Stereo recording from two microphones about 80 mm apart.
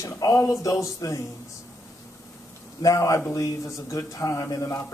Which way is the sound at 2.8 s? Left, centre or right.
Left.